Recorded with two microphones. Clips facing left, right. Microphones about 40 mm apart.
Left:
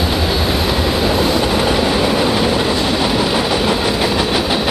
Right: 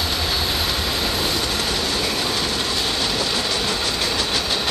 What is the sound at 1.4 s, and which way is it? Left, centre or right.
Train, centre.